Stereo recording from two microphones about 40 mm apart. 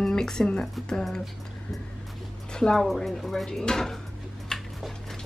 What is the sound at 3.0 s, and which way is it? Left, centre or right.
Speech, centre.